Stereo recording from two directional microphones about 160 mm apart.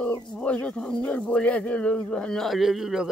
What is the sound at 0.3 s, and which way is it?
Speech, 5° left (ahead or behind).